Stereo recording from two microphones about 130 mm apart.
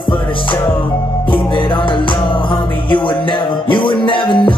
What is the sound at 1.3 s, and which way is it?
Music, 40° left (ahead or behind).